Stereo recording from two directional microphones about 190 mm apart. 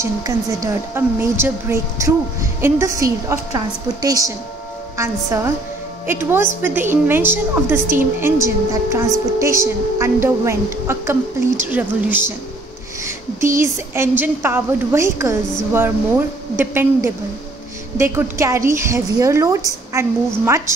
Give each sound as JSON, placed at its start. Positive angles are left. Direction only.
{"t": 0.6, "sound": "a woman's voice", "side_deg": -15}